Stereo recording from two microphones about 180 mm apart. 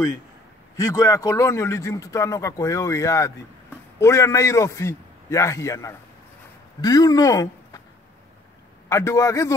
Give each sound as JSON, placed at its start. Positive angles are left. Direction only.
{"t": 0.7, "sound": "a man's voice", "side_deg": 20}
{"t": 8.8, "sound": "a man's voice", "side_deg": 15}